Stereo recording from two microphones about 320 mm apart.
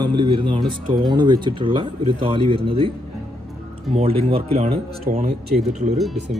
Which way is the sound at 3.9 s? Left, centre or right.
Centre.